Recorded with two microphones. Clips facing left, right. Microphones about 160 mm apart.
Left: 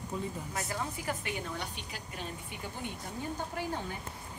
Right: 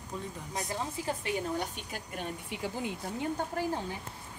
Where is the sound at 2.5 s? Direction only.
90° right.